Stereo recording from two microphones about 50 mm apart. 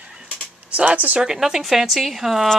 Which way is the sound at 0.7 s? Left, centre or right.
Right.